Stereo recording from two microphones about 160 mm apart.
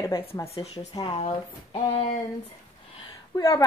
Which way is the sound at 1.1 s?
40° left (ahead or behind).